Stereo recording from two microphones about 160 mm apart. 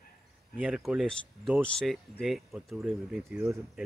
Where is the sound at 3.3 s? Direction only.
15° right (ahead or behind).